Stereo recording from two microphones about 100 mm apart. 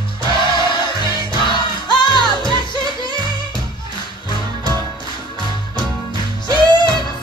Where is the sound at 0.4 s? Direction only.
55° left (ahead or behind).